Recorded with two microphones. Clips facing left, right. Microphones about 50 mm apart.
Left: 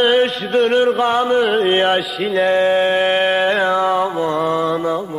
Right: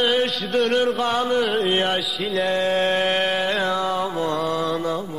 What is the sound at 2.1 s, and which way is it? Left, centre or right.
Mantra, centre.